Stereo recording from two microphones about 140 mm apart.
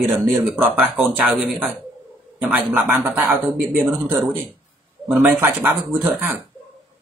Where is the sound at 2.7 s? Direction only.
15° right (ahead or behind).